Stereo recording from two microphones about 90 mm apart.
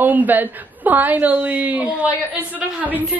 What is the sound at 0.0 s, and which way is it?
A woman's voice, 20° right (ahead or behind).